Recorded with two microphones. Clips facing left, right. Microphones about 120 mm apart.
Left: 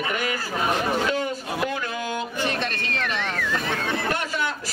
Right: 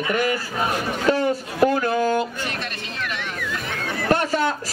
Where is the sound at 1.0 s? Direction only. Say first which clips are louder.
Right 5 dB; 40° right (ahead or behind).